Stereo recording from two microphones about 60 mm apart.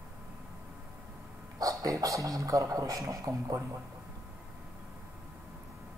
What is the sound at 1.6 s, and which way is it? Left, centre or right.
Speech, right.